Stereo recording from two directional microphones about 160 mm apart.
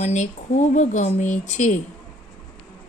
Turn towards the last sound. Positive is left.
turn(degrees=50)  # may be behind; listen again after turning